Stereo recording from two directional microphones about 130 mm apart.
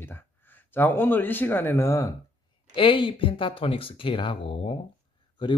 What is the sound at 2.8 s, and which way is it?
Speech, 40° left (ahead or behind).